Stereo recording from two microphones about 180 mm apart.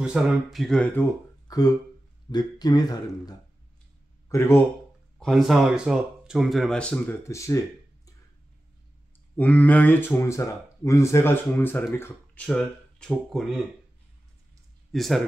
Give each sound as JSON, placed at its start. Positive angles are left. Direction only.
{"t": 0.0, "sound": "speech", "side_deg": 0}
{"t": 1.5, "sound": "speech", "side_deg": 20}
{"t": 5.2, "sound": "speech", "side_deg": 0}
{"t": 9.4, "sound": "speech", "side_deg": 10}
{"t": 14.9, "sound": "speech", "side_deg": 0}